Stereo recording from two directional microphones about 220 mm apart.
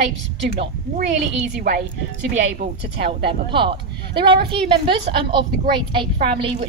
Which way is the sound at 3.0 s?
25° right (ahead or behind).